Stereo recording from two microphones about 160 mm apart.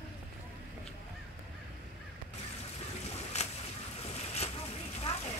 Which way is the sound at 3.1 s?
40° left (ahead or behind).